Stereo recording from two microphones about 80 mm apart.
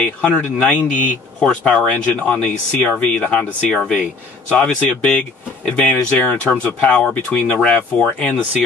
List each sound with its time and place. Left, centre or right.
0.0 s speech: left
3.7 s speech: centre